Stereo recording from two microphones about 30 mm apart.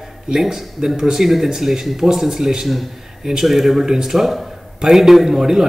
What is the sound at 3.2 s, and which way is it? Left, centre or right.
Speech, centre.